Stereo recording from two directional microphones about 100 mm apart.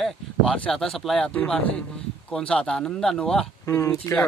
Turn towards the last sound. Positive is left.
turn(degrees=30)  # may be behind; listen again after turning